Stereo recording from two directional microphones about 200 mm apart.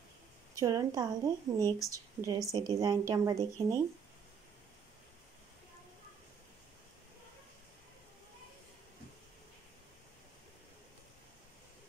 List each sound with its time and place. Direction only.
0.6 s speech: 15° right (ahead or behind)